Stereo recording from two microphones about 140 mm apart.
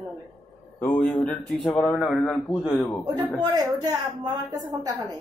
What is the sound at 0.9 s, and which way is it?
A man's voice, 10° left (ahead or behind).